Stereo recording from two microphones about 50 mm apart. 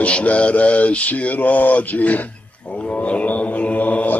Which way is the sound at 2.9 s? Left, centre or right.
Left.